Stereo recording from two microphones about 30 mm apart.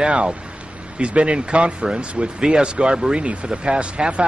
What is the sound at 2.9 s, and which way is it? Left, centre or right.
Speech, right.